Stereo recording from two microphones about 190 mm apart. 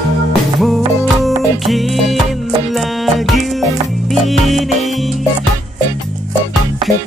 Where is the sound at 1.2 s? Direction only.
Centre (ahead or behind).